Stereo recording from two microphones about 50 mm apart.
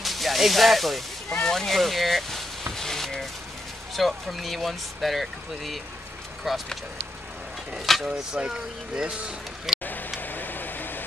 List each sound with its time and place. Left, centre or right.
0.0 s music: centre
1.3 s speech: centre
2.7 s a sound: centre
3.9 s speech: centre
7.8 s speech: centre
8.3 s speech: centre
9.7 s vehicle: centre
10.2 s a sound: left